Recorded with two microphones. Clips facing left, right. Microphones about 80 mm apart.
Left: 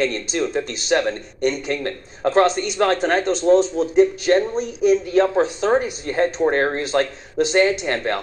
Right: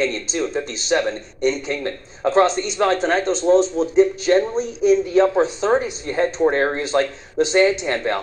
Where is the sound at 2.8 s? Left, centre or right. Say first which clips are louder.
Right 1 dB; centre.